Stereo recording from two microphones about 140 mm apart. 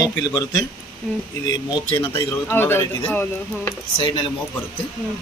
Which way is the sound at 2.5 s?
15° left (ahead or behind).